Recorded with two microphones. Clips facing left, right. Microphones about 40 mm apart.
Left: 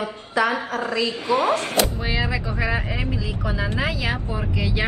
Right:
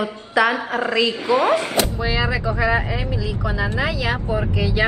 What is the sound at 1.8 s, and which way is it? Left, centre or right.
Speech, centre.